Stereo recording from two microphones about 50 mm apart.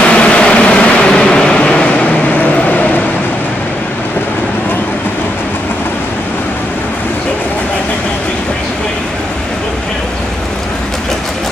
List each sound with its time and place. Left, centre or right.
0.0 s vehicle: left